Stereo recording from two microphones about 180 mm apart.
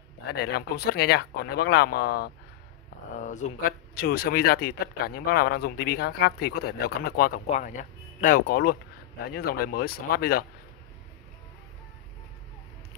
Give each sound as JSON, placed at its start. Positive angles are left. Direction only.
{"t": 0.4, "sound": "a man's voice", "side_deg": 65}
{"t": 3.2, "sound": "a man's voice", "side_deg": 45}